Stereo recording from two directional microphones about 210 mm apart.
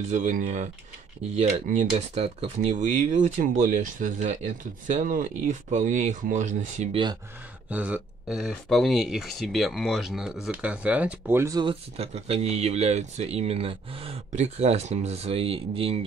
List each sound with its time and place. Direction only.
0.1 s speech: 35° right (ahead or behind)
7.7 s speech: 5° right (ahead or behind); by 16.0 s 25° right (ahead or behind)